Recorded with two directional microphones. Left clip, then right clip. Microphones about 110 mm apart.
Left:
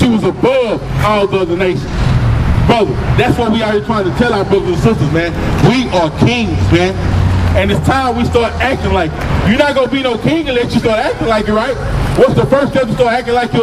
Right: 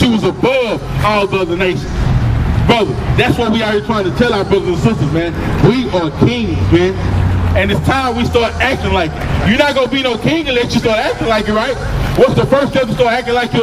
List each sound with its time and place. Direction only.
0.0 s a man's voice: 15° right (ahead or behind)
5.1 s a man's voice: 35° left (ahead or behind)
7.5 s a man's voice: centre (ahead or behind)